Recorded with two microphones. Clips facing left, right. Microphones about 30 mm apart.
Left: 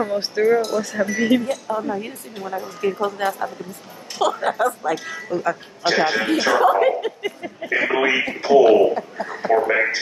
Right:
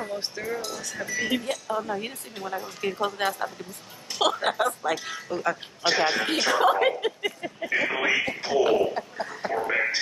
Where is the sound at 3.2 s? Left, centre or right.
Right.